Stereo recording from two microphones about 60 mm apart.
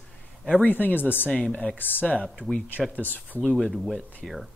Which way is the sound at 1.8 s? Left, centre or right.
Left.